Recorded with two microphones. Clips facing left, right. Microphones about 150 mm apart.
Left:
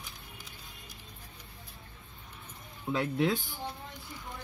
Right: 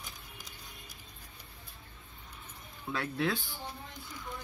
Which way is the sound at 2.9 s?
20° left (ahead or behind).